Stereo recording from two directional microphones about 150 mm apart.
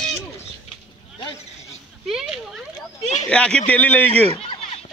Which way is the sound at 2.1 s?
5° right (ahead or behind).